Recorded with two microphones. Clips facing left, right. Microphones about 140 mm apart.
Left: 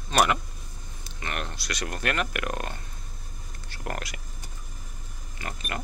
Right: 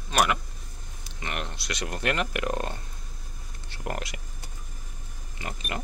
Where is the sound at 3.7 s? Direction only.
20° right (ahead or behind).